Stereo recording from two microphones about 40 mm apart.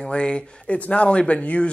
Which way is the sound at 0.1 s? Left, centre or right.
Left.